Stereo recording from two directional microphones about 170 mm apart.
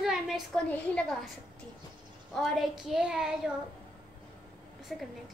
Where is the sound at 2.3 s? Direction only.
Centre (ahead or behind).